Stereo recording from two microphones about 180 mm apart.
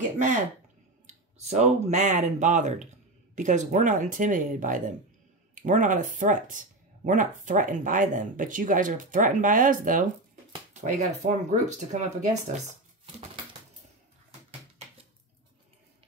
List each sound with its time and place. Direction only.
1.0 s speech: 35° right (ahead or behind)